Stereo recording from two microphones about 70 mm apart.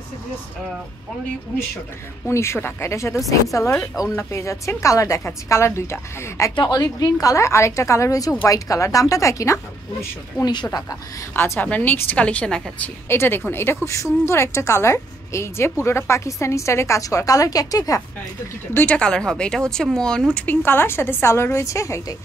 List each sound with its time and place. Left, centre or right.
2.2 s a woman's voice: left
4.2 s a woman's voice: left
6.7 s a woman's voice: left
10.4 s a woman's voice: left
11.3 s a woman's voice: left
11.6 s a woman's voice: left
13.1 s a woman's voice: left
13.8 s a woman's voice: left
18.9 s speech: centre
20.3 s a woman's voice: left